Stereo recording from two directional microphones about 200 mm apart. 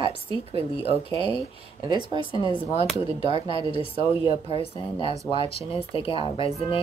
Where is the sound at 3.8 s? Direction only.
25° left (ahead or behind).